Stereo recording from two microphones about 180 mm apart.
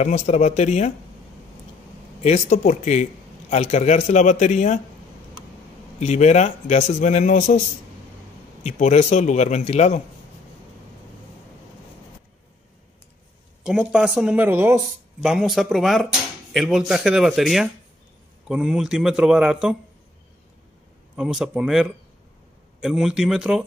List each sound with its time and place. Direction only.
0.0 s a man's voice: 40° left (ahead or behind)
2.2 s a man's voice: 40° left (ahead or behind)
5.9 s a man's voice: 40° left (ahead or behind)
8.6 s a man's voice: 40° left (ahead or behind)
13.7 s speech: 5° right (ahead or behind)
15.2 s speech: centre (ahead or behind)
21.2 s speech: 5° right (ahead or behind)